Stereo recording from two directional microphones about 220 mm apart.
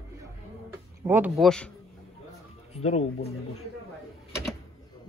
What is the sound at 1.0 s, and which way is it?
Speech, 10° right (ahead or behind).